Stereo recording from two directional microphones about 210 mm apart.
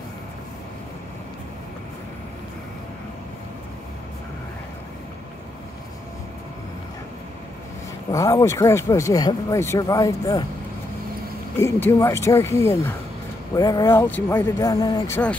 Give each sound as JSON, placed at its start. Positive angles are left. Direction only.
{"t": 8.1, "sound": "speech", "side_deg": 15}
{"t": 11.6, "sound": "speech", "side_deg": 15}